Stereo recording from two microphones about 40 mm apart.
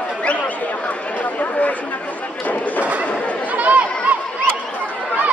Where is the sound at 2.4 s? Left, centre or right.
Left.